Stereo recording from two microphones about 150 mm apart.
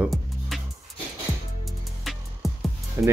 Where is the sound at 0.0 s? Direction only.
Centre (ahead or behind).